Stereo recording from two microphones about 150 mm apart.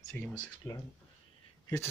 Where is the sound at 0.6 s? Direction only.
15° left (ahead or behind).